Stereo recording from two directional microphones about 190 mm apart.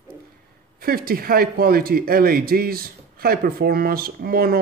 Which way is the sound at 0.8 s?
50° right (ahead or behind).